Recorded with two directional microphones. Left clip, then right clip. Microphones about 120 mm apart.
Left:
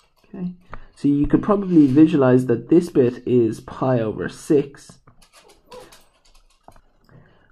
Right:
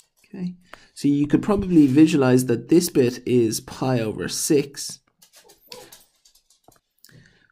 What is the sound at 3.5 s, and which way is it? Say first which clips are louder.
Speech: right 1 dB; 35° right (ahead or behind).